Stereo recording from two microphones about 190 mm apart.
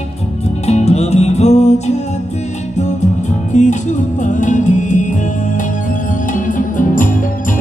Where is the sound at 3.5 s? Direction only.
40° left (ahead or behind).